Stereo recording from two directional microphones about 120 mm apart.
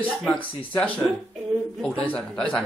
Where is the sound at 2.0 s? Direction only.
10° left (ahead or behind).